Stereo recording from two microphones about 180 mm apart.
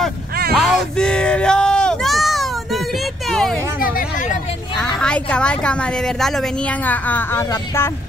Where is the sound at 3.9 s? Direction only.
50° left (ahead or behind).